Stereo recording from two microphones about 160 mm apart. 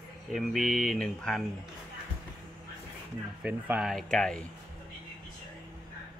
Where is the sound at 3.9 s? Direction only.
5° left (ahead or behind).